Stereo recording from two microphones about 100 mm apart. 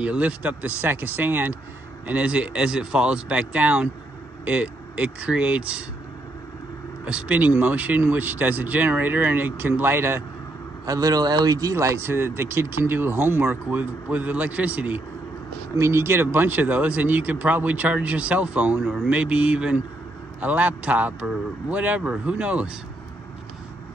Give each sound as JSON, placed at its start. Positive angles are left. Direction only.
{"t": 0.0, "sound": "speech", "side_deg": -15}
{"t": 7.1, "sound": "speech", "side_deg": -15}
{"t": 10.9, "sound": "speech", "side_deg": -40}
{"t": 15.7, "sound": "speech", "side_deg": -30}